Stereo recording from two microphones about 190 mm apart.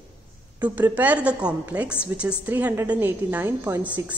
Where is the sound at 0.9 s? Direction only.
10° right (ahead or behind).